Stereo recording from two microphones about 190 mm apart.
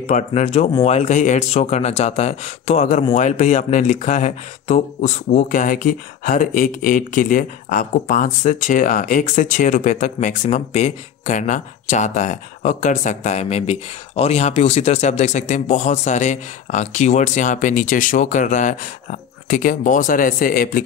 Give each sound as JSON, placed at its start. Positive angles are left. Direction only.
{"t": 0.0, "sound": "speech", "side_deg": 35}